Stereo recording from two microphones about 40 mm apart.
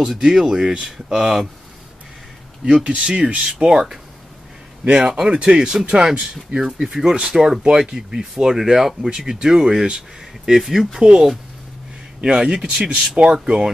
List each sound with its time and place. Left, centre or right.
0.0 s speech: centre
2.6 s speech: right
10.6 s speech: centre
11.0 s speech: centre